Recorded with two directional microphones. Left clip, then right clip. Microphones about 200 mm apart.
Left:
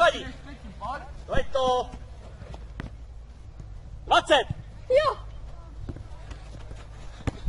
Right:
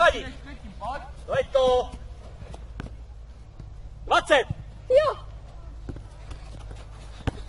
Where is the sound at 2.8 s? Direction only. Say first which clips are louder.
Even; 40° left (ahead or behind).